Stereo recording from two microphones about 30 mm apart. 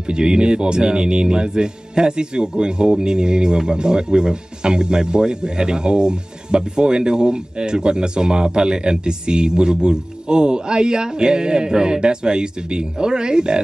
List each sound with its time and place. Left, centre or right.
0.1 s speech: right